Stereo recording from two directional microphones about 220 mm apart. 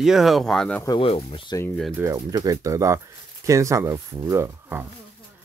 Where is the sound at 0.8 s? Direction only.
25° left (ahead or behind).